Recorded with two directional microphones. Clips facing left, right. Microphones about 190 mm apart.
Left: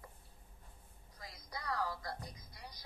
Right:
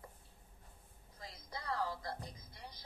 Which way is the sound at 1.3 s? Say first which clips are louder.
Even; 25° right (ahead or behind).